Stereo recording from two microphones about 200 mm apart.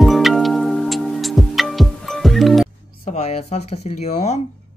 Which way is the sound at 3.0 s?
30° left (ahead or behind).